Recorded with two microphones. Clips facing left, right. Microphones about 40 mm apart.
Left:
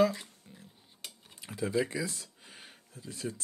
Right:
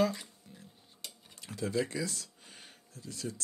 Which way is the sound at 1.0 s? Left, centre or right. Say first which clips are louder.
Left 1 dB; centre.